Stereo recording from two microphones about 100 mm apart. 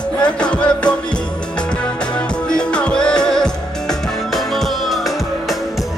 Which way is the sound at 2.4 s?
10° left (ahead or behind).